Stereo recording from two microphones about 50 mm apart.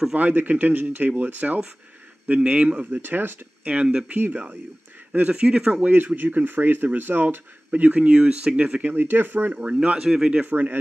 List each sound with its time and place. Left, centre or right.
0.1 s speech: right
2.9 s speech: right
3.6 s speech: centre
4.2 s speech: right
5.3 s speech: centre
5.7 s speech: right
8.8 s speech: right
9.5 s speech: right
9.9 s speech: centre
10.4 s speech: right